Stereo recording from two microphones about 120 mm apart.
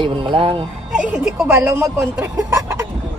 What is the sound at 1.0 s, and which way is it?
Speech, 5° right (ahead or behind).